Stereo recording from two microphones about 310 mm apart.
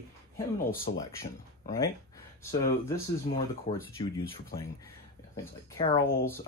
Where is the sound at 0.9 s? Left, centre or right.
Left.